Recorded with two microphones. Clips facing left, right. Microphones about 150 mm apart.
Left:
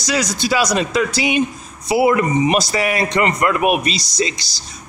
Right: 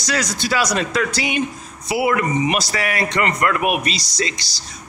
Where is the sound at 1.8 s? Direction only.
25° left (ahead or behind).